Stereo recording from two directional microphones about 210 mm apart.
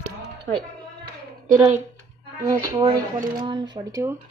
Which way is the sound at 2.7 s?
20° right (ahead or behind).